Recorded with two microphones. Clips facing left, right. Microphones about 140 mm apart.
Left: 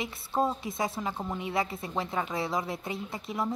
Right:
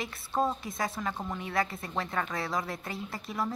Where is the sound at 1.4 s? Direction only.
25° left (ahead or behind).